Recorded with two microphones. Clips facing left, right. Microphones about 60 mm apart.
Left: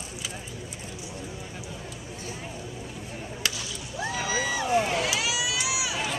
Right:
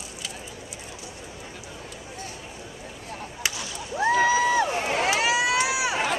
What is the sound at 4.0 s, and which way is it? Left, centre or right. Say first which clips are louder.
Crowd: right 9 dB; right.